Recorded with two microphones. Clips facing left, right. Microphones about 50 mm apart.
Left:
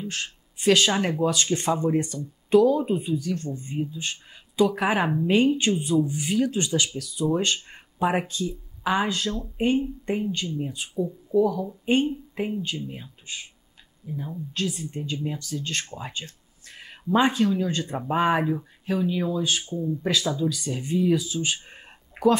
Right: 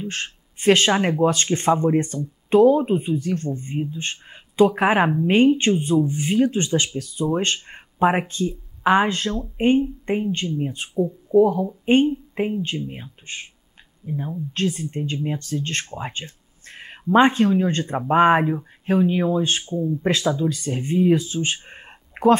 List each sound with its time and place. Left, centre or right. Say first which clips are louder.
0.0 s speech: right 3 dB; right